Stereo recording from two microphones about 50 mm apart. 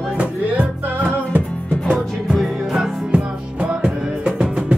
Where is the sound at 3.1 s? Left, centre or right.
Right.